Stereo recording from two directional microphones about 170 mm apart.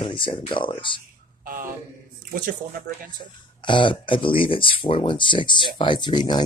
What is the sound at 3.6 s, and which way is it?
Speech, 30° left (ahead or behind).